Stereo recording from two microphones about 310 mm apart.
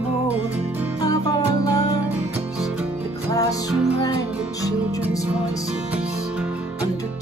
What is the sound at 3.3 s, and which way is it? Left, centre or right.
Music, centre.